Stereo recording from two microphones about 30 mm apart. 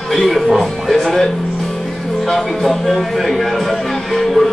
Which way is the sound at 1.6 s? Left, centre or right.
Centre.